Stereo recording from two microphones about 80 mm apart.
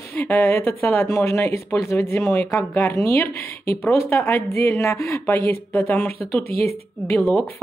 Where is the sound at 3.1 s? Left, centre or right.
Left.